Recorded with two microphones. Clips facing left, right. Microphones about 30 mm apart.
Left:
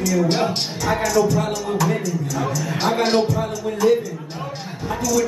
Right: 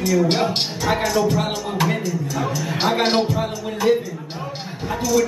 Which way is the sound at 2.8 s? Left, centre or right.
Right.